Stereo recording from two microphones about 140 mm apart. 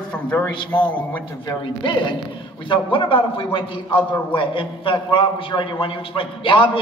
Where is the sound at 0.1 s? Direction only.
10° left (ahead or behind).